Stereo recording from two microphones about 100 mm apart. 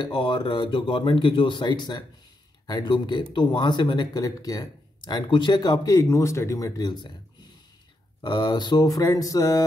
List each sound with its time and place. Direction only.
0.0 s speech: 50° left (ahead or behind)
8.2 s speech: 45° left (ahead or behind)